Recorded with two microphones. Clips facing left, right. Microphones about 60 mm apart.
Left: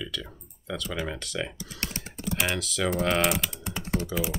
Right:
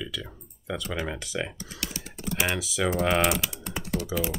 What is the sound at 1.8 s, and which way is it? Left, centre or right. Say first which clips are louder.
Speech: left 1 dB; left.